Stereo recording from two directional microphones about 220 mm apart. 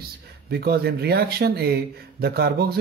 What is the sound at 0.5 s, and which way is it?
Speech, 45° right (ahead or behind).